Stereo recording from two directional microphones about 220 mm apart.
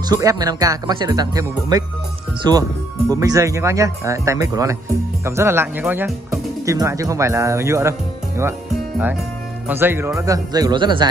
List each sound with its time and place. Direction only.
0.1 s speech: 15° right (ahead or behind)
3.1 s speech: 15° right (ahead or behind)
9.7 s speech: 10° right (ahead or behind)